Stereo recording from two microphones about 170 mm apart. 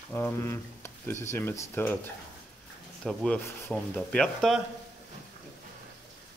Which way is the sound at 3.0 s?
10° left (ahead or behind).